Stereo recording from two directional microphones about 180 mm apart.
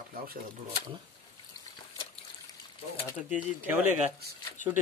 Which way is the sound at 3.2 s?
10° right (ahead or behind).